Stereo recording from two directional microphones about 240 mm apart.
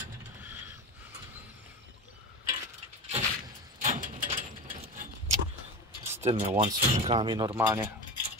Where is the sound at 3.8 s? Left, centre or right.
Right.